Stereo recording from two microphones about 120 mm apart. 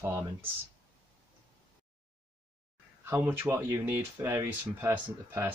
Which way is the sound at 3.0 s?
20° right (ahead or behind).